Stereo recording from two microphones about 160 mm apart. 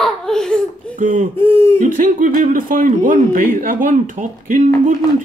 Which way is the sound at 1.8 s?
55° right (ahead or behind).